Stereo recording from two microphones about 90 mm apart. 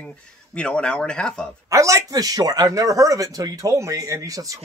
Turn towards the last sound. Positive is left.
turn(degrees=-40)  # may be behind; listen again after turning